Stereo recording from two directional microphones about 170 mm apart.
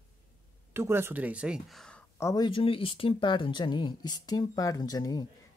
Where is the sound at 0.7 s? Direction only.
15° right (ahead or behind); by 2.0 s 5° left (ahead or behind).